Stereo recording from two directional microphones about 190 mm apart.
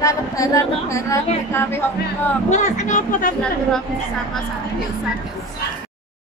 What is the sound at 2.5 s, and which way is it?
Speech, 40° left (ahead or behind).